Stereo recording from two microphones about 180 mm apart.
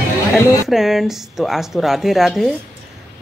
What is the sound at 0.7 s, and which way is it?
Speech, centre (ahead or behind).